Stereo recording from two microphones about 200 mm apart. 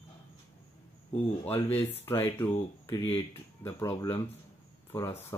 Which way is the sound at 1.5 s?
10° left (ahead or behind).